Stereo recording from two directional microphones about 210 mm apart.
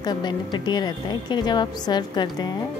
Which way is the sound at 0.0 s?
20° left (ahead or behind).